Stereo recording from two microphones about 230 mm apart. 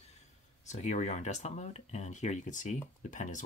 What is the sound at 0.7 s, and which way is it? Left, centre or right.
Speech, left.